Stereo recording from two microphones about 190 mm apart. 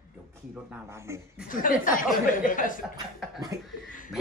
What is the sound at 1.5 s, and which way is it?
Speech, 45° left (ahead or behind).